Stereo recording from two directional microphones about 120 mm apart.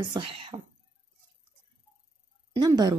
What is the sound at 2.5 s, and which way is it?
Speech, 35° right (ahead or behind).